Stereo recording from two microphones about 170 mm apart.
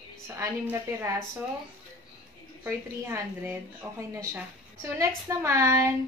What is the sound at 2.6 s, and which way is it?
A woman's voice, 15° right (ahead or behind).